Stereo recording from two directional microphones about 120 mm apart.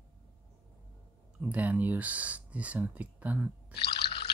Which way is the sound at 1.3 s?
10° right (ahead or behind).